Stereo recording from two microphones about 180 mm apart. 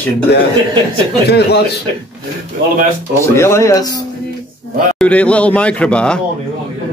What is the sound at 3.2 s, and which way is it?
Speech, 15° left (ahead or behind).